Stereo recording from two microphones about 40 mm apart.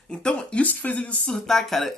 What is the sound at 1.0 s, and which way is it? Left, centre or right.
Speech, left.